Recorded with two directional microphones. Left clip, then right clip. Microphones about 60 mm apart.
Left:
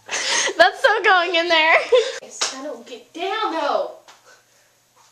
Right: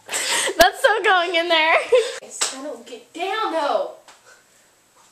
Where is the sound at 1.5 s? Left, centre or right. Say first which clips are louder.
Left 1 dB; centre.